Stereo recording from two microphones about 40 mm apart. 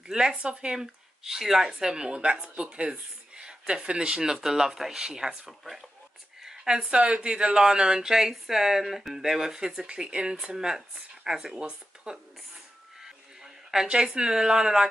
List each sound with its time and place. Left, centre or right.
0.0 s speech: centre
1.2 s speech: centre
5.0 s speech: centre
5.6 s speech: centre
11.6 s speech: right
13.0 s a sound: centre
13.8 s speech: right